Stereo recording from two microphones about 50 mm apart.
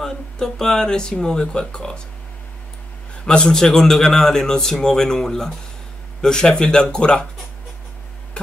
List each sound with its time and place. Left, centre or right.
0.0 s a man's voice: centre
3.3 s a man's voice: centre